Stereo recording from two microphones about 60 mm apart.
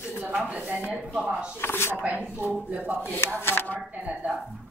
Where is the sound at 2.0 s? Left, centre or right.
Right.